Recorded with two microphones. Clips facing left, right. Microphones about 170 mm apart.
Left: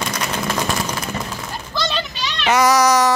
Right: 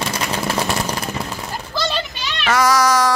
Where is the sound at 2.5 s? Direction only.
20° left (ahead or behind).